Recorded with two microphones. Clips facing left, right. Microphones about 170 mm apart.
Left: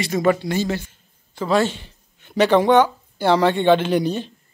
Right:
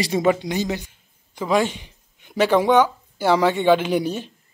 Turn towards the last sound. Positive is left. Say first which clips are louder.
# left 2 dB
turn(degrees=-10)  # may be behind; listen again after turning